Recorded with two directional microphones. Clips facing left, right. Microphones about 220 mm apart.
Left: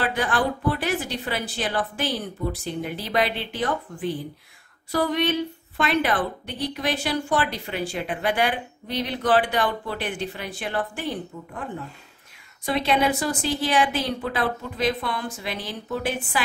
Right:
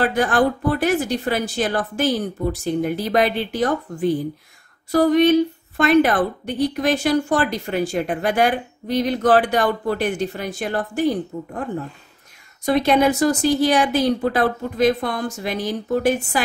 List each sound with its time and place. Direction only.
0.0 s a woman's voice: 45° right (ahead or behind)
12.6 s a woman's voice: 45° right (ahead or behind)